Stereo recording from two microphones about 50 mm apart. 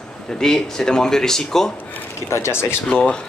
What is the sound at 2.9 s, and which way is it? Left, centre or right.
Speech, centre.